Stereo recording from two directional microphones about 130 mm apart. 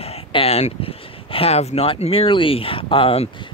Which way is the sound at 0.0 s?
50° left (ahead or behind).